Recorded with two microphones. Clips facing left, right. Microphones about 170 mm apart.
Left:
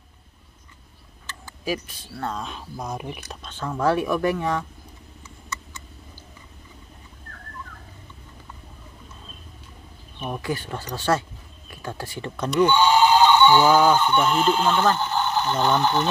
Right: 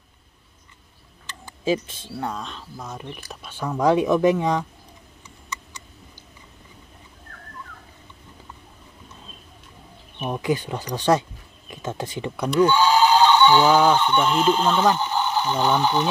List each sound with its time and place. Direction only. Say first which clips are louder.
1.2 s a sound: right 5 dB; 20° right (ahead or behind)
2.3 s speech: left 2 dB; 10° left (ahead or behind)
3.3 s speech: right 2 dB; 10° right (ahead or behind)
10.1 s speech: right 4 dB; 20° right (ahead or behind)
13.1 s speech: even; 10° left (ahead or behind)
14.8 s speech: right 1 dB; 10° right (ahead or behind)